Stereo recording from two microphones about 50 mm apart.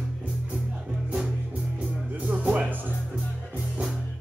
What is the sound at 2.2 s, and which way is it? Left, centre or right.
Music, right.